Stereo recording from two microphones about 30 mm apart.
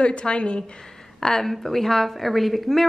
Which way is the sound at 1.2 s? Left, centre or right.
Centre.